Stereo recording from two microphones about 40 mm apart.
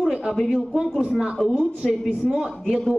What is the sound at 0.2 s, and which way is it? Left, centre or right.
A man's voice, centre.